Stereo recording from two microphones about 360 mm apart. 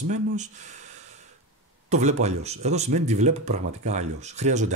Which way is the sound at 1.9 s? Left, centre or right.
Centre.